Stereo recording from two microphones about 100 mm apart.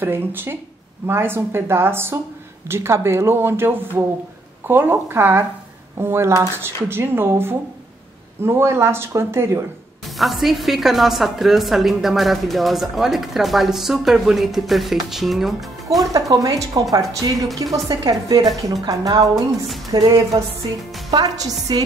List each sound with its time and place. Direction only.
0.0 s speech: 20° right (ahead or behind)
10.0 s a woman's voice: centre (ahead or behind)
16.0 s a woman's voice: 35° right (ahead or behind)